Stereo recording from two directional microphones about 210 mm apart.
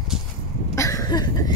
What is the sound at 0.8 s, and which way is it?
Cough, 15° left (ahead or behind).